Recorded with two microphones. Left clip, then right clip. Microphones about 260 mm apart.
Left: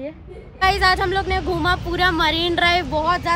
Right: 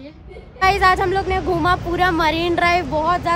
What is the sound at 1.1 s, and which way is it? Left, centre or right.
Speech, centre.